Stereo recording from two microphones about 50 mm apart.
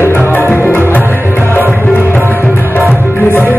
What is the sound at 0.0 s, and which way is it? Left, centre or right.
Music, left.